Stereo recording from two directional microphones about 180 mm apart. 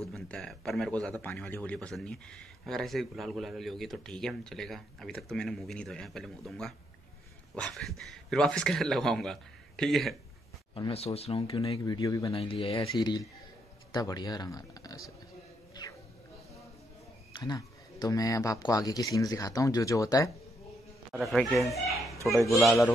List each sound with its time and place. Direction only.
0.1 s speech: 5° left (ahead or behind)
10.7 s speech: 30° left (ahead or behind)
12.3 s speech: 30° left (ahead or behind)
15.8 s music: 25° left (ahead or behind)
17.4 s speech: 20° left (ahead or behind)
21.2 s speech: centre (ahead or behind)